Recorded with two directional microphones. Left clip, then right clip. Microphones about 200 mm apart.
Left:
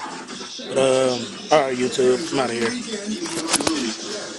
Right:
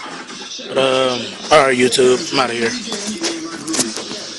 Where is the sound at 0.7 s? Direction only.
Centre (ahead or behind).